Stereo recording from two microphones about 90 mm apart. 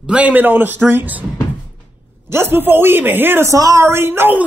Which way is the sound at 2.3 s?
25° right (ahead or behind).